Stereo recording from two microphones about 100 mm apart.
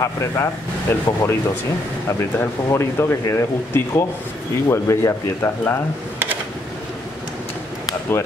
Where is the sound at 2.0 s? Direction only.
25° left (ahead or behind).